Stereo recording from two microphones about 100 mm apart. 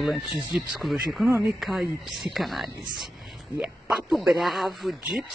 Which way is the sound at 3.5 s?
15° right (ahead or behind).